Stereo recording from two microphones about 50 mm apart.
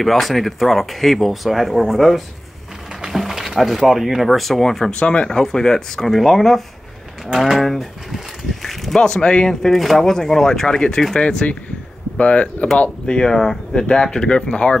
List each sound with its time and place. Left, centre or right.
0.0 s speech: centre
4.9 s speech: left
5.3 s speech: centre
8.6 s a sound: centre
9.0 s speech: centre
9.5 s speech: centre
11.1 s speech: left